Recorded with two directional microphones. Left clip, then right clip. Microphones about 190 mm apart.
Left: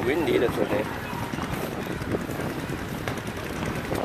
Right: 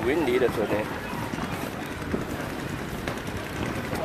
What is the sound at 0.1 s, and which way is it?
Speech, 25° right (ahead or behind).